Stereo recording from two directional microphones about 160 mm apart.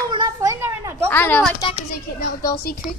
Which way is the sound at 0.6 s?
15° right (ahead or behind).